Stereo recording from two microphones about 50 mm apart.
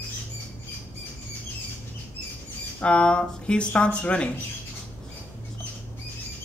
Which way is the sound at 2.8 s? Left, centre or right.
Left.